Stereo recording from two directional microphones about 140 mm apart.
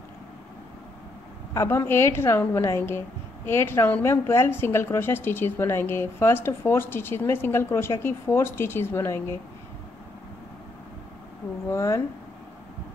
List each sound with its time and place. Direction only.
1.5 s a woman's voice: 20° left (ahead or behind)
11.7 s speech: 20° left (ahead or behind)